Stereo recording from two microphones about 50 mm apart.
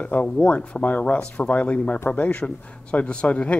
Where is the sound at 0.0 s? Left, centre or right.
Left.